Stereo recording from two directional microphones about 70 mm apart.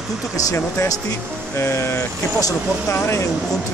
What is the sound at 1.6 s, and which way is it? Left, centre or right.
Speech, left.